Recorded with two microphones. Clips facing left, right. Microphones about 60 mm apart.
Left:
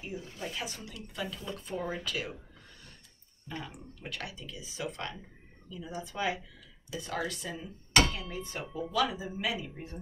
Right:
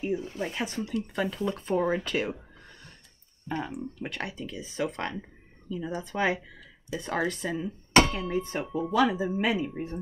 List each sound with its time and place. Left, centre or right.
0.0 s speech: right
3.5 s speech: right